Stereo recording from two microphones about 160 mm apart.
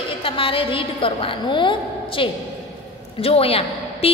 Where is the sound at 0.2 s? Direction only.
35° left (ahead or behind).